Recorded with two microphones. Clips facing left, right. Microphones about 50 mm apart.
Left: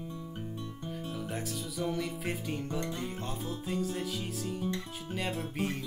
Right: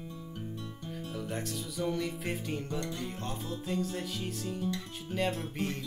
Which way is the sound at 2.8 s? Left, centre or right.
Centre.